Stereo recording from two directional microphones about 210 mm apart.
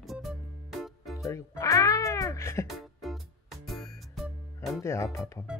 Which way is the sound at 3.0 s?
Centre (ahead or behind).